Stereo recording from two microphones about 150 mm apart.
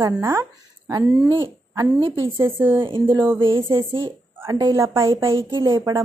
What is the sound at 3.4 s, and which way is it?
Speech, 30° right (ahead or behind).